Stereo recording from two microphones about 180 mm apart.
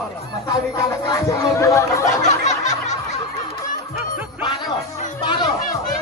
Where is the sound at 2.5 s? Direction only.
40° left (ahead or behind).